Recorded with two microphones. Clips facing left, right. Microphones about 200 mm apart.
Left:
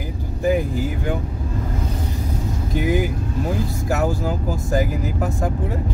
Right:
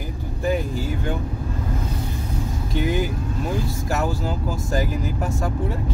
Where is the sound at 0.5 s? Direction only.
15° left (ahead or behind).